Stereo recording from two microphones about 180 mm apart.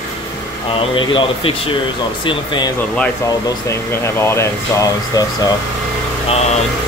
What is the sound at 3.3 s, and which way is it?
Speech, 15° left (ahead or behind).